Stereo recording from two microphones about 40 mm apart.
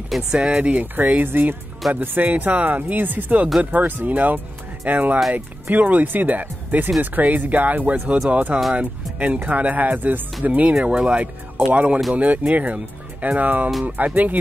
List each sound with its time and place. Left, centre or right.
0.3 s speech: centre
0.6 s speech: right
1.8 s speech: centre
2.3 s speech: right
10.4 s speech: right
10.7 s speech: right